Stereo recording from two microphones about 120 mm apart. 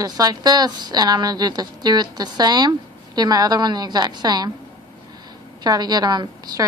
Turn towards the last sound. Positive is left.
turn(degrees=-35)  # may be behind; listen again after turning